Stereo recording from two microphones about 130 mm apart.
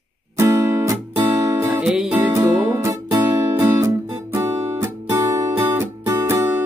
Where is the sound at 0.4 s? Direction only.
20° right (ahead or behind).